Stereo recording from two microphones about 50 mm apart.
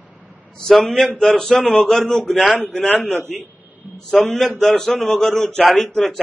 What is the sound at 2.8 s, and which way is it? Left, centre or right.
A man's voice, left.